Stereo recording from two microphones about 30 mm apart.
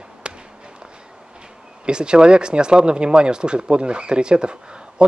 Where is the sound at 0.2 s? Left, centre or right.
Right.